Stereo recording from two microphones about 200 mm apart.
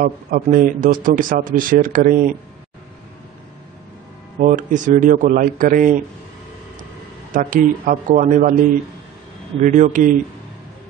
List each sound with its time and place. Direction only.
0.0 s speech: 45° right (ahead or behind)
4.4 s a man's voice: 40° right (ahead or behind)
7.3 s a man's voice: 40° right (ahead or behind)
9.6 s a man's voice: 40° right (ahead or behind)